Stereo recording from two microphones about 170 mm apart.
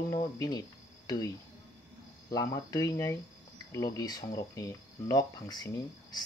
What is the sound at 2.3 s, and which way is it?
Speech, 20° left (ahead or behind).